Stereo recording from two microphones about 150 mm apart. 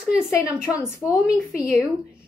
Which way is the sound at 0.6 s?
20° left (ahead or behind).